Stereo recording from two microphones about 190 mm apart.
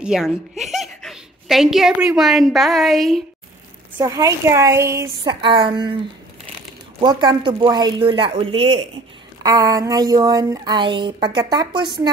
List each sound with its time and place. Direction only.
0.0 s a sound: 5° right (ahead or behind)
2.1 s a woman's voice: centre (ahead or behind)
4.0 s a woman's voice: 20° right (ahead or behind)
7.0 s speech: 20° right (ahead or behind)
9.4 s speech: 20° right (ahead or behind)